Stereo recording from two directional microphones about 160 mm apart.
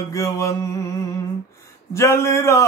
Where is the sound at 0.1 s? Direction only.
20° left (ahead or behind).